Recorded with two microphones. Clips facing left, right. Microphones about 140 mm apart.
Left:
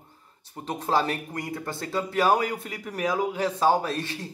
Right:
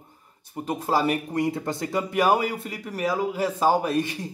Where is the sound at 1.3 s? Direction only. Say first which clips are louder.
Right 7 dB; 20° right (ahead or behind).